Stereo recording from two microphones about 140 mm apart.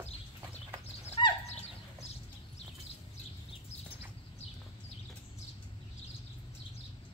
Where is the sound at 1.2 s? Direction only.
35° left (ahead or behind).